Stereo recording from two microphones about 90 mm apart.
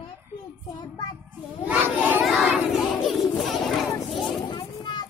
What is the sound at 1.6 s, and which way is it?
Children playing, 20° right (ahead or behind).